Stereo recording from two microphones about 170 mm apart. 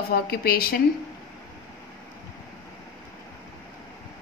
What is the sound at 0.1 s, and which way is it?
Speech, 65° left (ahead or behind).